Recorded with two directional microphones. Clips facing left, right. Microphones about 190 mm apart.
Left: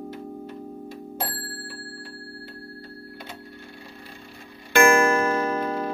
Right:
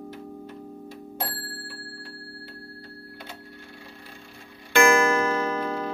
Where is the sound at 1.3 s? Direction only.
10° left (ahead or behind).